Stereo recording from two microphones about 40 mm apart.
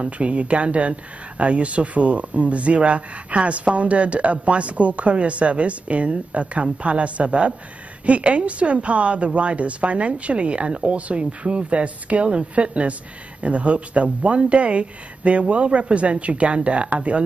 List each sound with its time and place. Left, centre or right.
0.0 s speech: right